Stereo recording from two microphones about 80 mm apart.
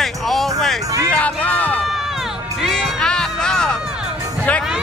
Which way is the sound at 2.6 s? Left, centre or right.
Centre.